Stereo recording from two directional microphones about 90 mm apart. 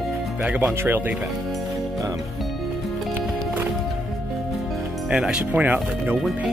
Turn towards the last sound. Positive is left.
turn(degrees=-20)  # may be behind; listen again after turning